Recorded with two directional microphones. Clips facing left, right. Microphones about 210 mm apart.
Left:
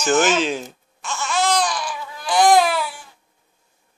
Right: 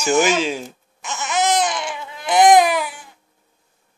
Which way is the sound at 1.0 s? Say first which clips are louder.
Right 1 dB; 20° right (ahead or behind).